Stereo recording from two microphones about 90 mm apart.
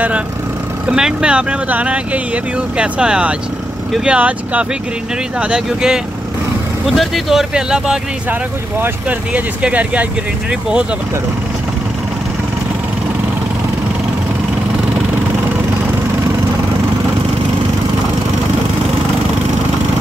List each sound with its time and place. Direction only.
0.8 s speech: 10° right (ahead or behind)
8.3 s speech: 20° right (ahead or behind)